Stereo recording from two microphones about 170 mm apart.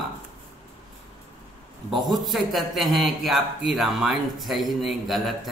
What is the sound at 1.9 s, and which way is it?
A man's voice, centre (ahead or behind).